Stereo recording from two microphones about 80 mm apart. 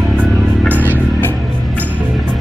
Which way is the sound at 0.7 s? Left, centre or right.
Right.